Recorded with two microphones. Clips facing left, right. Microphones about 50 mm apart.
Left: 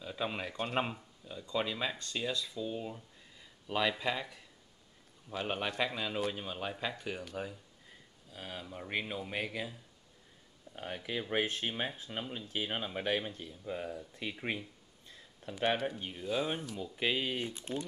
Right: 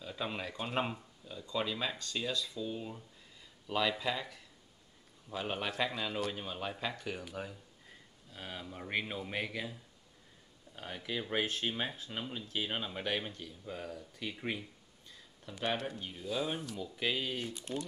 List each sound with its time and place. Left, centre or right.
0.0 s speech: centre
5.3 s speech: centre
10.8 s speech: centre
13.3 s speech: left
15.6 s speech: centre